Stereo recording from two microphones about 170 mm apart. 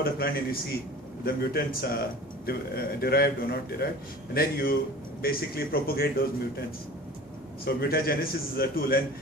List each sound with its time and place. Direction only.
0.0 s a man's voice: 60° left (ahead or behind)
7.6 s a man's voice: 65° left (ahead or behind)